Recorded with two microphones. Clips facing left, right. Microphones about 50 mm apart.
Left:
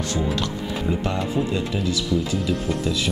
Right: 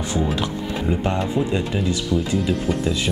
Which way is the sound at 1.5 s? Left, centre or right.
Right.